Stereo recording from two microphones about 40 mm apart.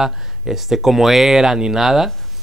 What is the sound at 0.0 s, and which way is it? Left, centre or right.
Speech, centre.